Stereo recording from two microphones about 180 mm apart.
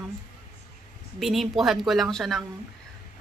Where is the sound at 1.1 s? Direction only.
Centre (ahead or behind).